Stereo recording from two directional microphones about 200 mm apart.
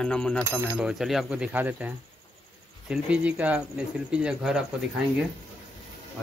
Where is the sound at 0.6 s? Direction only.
5° right (ahead or behind).